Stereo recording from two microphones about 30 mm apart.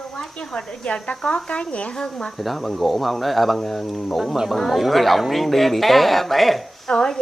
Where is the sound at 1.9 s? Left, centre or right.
Left.